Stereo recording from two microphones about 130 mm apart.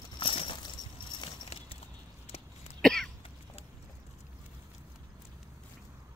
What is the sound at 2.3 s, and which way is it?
Cough, 50° left (ahead or behind).